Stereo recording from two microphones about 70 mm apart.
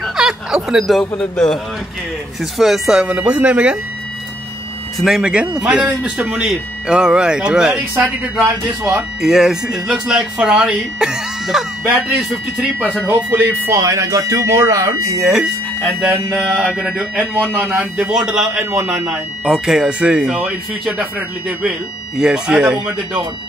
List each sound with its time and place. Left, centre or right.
0.0 s a sound: centre
1.1 s a man's voice: centre
2.6 s speech: centre
3.1 s speech: centre
4.9 s speech: centre
5.6 s a man's voice: centre
9.2 s a man's voice: centre
13.0 s speech: right
13.7 s speech: right
15.1 s speech: centre
16.4 s a man's voice: centre
17.6 s speech: right
17.9 s a man's voice: centre
21.6 s a man's voice: centre